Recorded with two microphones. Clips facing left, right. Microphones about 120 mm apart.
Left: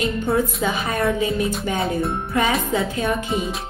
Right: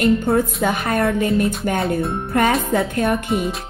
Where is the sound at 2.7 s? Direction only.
55° right (ahead or behind).